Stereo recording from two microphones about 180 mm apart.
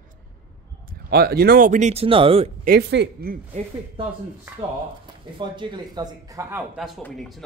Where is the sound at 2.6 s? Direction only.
65° right (ahead or behind).